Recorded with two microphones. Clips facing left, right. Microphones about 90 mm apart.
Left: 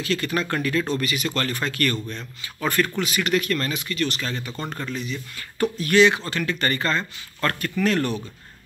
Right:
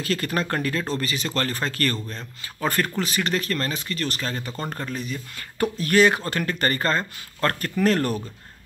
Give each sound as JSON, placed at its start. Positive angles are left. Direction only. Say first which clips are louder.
{"t": 0.0, "sound": "speech", "louder": "left 1 dB", "side_deg": -40}